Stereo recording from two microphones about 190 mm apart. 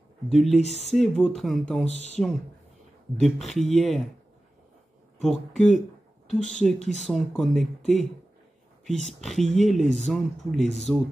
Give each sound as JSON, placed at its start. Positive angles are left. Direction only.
{"t": 0.3, "sound": "speech", "side_deg": 0}
{"t": 1.9, "sound": "speech", "side_deg": 35}
{"t": 3.2, "sound": "speech", "side_deg": 0}
{"t": 5.2, "sound": "speech", "side_deg": 0}
{"t": 6.8, "sound": "speech", "side_deg": 40}
{"t": 7.1, "sound": "speech", "side_deg": 0}
{"t": 9.0, "sound": "speech", "side_deg": 0}